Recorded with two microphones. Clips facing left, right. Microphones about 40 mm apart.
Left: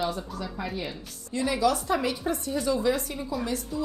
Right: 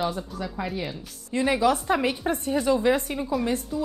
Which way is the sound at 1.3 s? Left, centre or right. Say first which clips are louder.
Right 3 dB; right.